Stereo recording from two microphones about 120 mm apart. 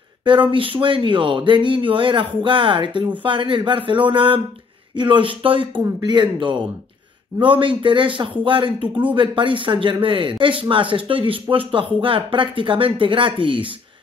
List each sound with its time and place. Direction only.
0.2 s a man's voice: 45° right (ahead or behind)
7.3 s speech: 45° right (ahead or behind)